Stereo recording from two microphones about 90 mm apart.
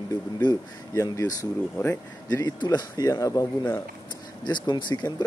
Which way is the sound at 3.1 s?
40° left (ahead or behind).